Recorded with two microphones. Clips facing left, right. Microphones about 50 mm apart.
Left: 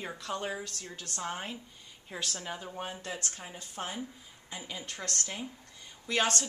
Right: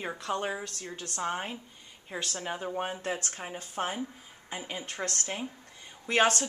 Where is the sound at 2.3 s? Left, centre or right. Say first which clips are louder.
Right 6 dB; right.